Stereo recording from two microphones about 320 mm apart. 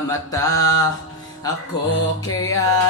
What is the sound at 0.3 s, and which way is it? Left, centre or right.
Music, centre.